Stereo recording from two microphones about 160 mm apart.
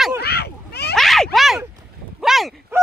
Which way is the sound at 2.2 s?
Centre (ahead or behind).